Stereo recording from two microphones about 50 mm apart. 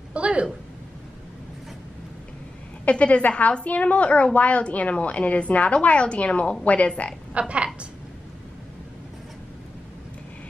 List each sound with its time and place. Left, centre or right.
0.1 s a sound: right
2.8 s a woman's voice: left
7.3 s a woman's voice: right